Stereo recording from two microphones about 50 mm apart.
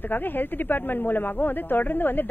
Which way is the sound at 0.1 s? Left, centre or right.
Left.